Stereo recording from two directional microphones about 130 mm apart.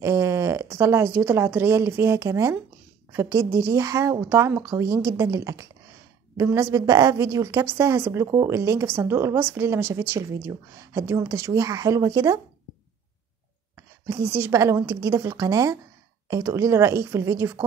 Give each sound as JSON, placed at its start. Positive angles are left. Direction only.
{"t": 0.0, "sound": "speech", "side_deg": -20}
{"t": 13.7, "sound": "speech", "side_deg": -25}